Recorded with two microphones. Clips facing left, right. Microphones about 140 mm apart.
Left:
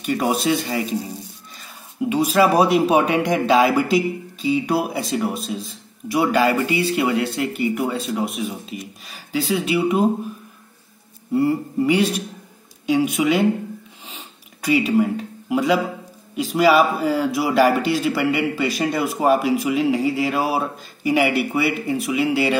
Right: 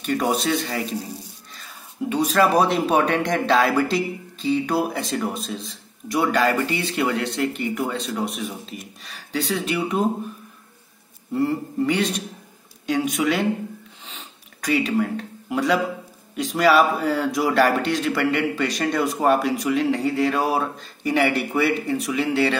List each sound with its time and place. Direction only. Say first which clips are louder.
0.0 s a man's voice: left 2 dB; 5° left (ahead or behind)
2.0 s a man's voice: left 2 dB; 5° left (ahead or behind)
11.3 s a man's voice: left 3 dB; 10° left (ahead or behind)
14.0 s a sound: left 2 dB; 10° left (ahead or behind)
16.3 s a man's voice: left 2 dB; 5° left (ahead or behind)